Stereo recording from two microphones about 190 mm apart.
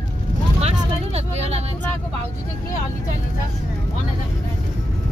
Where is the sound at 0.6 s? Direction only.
35° right (ahead or behind).